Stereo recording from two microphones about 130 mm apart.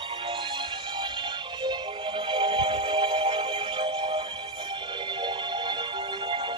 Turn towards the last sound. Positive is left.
turn(degrees=-40)  # may be behind; listen again after turning